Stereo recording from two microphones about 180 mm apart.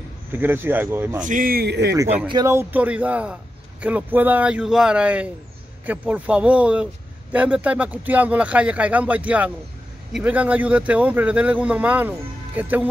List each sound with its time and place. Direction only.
0.3 s speech: 10° right (ahead or behind)
1.2 s a man's voice: 50° right (ahead or behind); by 2.0 s 70° right (ahead or behind)
2.0 s speech: 10° right (ahead or behind)